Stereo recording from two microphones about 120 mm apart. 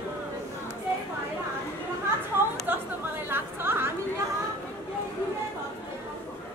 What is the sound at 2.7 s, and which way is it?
Chatter, 15° right (ahead or behind).